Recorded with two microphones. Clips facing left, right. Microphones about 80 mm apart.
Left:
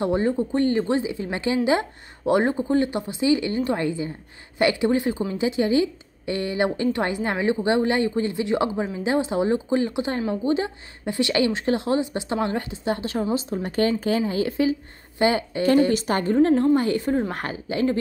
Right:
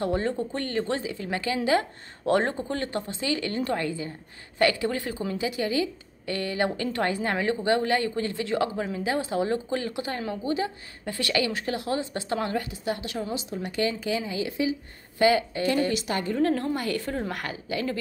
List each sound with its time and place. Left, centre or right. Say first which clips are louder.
0.0 s a woman's voice: left 5 dB; centre; by 14.8 s left
15.1 s speech: even; left
15.9 s a woman's voice: left 6 dB; left
16.3 s a woman's voice: left 9 dB; left